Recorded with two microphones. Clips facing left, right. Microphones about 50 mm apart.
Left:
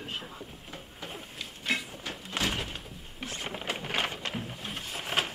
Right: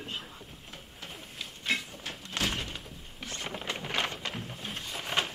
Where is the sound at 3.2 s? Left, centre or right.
Centre.